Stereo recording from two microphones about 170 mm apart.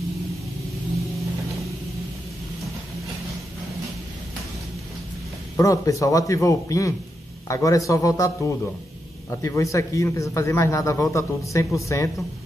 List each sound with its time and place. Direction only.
5.6 s a man's voice: 20° left (ahead or behind)